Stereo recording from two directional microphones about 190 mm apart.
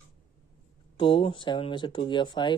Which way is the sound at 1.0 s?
25° left (ahead or behind).